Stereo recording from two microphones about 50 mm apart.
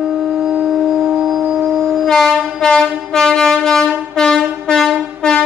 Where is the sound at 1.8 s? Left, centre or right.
Centre.